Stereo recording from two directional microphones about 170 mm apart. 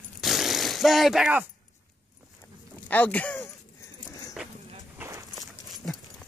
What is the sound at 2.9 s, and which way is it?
Speech, 10° left (ahead or behind).